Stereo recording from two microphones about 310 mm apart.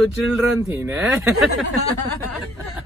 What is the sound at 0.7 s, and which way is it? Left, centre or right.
Speech, centre.